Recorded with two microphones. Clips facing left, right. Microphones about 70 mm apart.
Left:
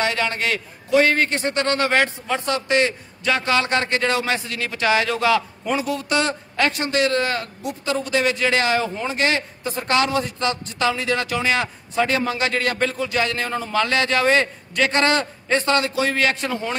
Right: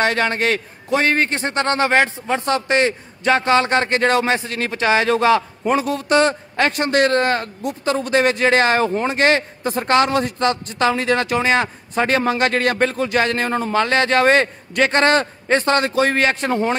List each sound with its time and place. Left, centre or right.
0.0 s speech: right
6.8 s speech: right